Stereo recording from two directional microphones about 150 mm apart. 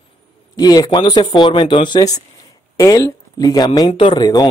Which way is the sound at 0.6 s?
25° left (ahead or behind).